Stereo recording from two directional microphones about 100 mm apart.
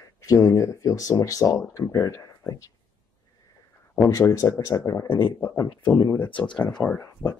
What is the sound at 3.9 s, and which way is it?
Speech, 35° left (ahead or behind).